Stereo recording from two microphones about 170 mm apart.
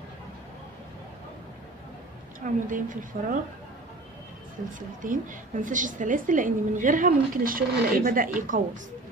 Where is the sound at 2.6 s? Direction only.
50° right (ahead or behind).